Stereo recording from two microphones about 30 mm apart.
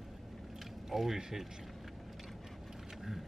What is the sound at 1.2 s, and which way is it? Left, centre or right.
Speech, centre.